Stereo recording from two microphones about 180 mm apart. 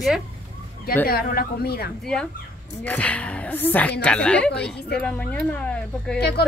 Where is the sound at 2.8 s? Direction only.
5° left (ahead or behind).